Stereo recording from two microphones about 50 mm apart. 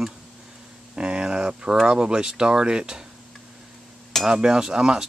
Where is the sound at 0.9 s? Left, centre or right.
Centre.